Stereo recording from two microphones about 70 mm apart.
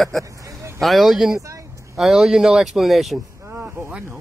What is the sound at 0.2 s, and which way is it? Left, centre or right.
Vehicle, right.